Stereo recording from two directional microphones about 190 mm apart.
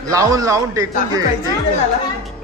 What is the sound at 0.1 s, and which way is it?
Speech, 15° right (ahead or behind).